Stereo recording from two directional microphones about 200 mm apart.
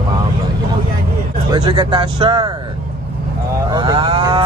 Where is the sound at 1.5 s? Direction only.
20° right (ahead or behind).